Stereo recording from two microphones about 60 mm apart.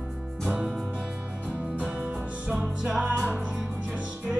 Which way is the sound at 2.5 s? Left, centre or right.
Centre.